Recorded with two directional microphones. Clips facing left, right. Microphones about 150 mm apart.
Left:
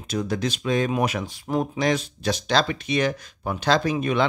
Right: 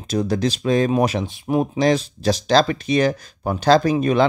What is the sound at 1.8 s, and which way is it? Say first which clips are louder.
Speech: right 5 dB; 35° right (ahead or behind).